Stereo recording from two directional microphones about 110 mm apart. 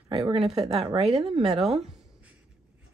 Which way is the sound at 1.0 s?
65° right (ahead or behind).